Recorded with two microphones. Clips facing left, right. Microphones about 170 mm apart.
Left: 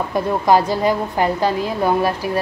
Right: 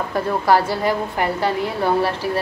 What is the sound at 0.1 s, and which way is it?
A woman's voice, 15° left (ahead or behind).